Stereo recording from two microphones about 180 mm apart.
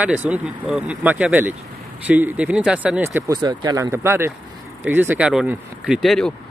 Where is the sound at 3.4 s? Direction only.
25° right (ahead or behind).